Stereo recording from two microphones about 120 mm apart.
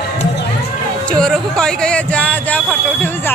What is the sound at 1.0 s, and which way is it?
Speech, 5° left (ahead or behind).